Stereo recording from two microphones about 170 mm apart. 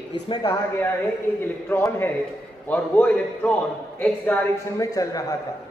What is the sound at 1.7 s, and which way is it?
A man's voice, 15° left (ahead or behind).